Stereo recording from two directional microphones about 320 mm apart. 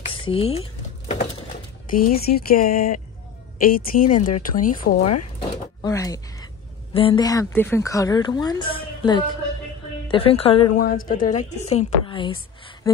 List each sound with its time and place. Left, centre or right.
0.0 s a sound: centre
3.5 s a woman's voice: left
5.8 s a woman's voice: centre
11.7 s speech: centre